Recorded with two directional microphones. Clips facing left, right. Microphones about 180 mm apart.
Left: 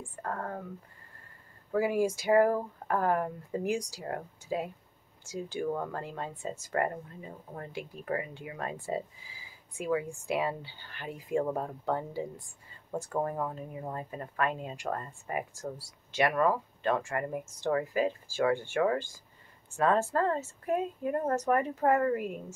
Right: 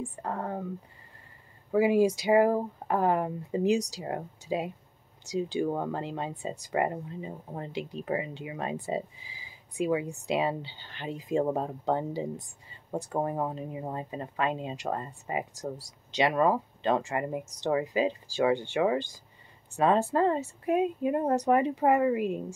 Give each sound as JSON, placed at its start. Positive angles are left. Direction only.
{"t": 0.1, "sound": "speech", "side_deg": -20}
{"t": 1.7, "sound": "a woman's voice", "side_deg": -20}